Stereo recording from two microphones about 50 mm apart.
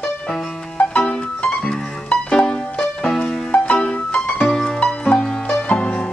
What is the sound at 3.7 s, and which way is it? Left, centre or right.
Music, left.